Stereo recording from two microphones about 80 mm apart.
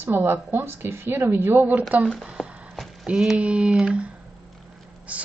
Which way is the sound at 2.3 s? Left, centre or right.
Centre.